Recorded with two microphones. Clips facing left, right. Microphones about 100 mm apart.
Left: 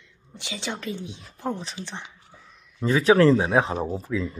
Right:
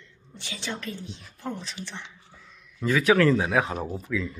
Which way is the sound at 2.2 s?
15° left (ahead or behind).